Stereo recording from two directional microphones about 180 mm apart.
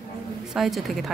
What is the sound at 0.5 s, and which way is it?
Speech, centre (ahead or behind).